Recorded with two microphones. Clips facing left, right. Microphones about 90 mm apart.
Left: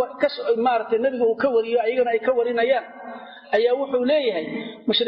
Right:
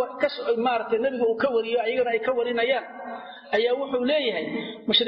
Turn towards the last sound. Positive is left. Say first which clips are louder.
# left 3 dB
turn(degrees=0)  # may be behind; listen again after turning